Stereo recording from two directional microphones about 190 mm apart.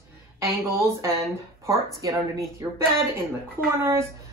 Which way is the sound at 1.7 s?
15° right (ahead or behind).